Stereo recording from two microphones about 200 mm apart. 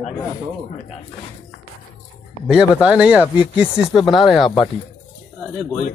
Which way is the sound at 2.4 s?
5° right (ahead or behind).